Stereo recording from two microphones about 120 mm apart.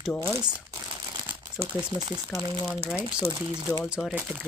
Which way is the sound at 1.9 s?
35° right (ahead or behind).